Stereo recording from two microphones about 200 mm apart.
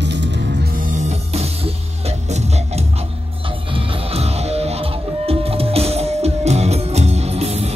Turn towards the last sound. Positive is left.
turn(degrees=-35)  # may be behind; listen again after turning